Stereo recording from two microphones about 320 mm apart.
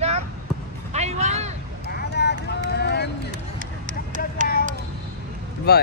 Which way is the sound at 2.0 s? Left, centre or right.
Left.